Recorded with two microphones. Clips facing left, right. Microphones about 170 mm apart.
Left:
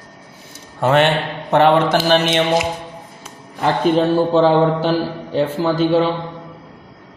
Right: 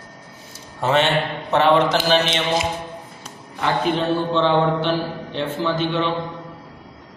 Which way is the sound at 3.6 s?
40° left (ahead or behind).